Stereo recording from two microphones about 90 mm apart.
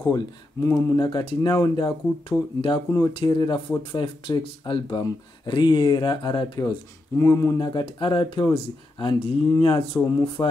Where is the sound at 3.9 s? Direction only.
70° left (ahead or behind); by 6.7 s 55° left (ahead or behind).